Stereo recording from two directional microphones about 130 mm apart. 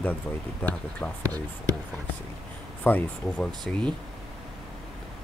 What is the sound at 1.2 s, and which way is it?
Speech, 30° right (ahead or behind).